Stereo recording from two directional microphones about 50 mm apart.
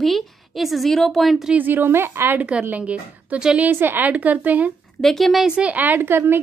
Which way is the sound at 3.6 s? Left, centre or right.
Right.